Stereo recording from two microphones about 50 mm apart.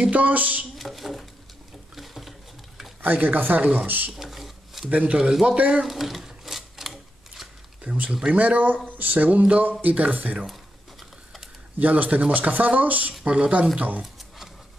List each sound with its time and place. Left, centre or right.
0.1 s speech: right
0.7 s speech: centre
2.0 s patter: centre
3.0 s speech: right
4.1 s a sound: centre
5.3 s speech: centre
5.7 s typewriter: centre
7.9 s speech: right
11.8 s speech: right
13.7 s speech: right
14.0 s a sound: centre